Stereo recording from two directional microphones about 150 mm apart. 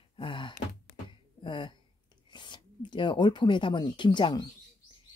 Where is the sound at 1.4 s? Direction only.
30° left (ahead or behind).